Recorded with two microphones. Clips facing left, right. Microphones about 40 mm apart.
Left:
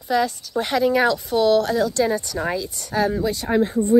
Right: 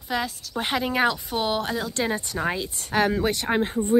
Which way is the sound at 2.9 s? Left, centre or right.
Right.